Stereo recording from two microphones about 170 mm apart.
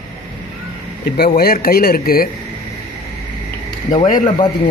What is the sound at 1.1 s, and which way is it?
Speech, 65° left (ahead or behind).